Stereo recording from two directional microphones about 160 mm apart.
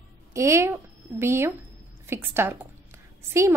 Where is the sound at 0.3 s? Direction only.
20° right (ahead or behind).